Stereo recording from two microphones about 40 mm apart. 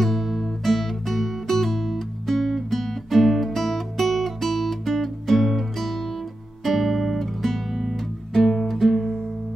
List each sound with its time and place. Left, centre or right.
0.0 s music: centre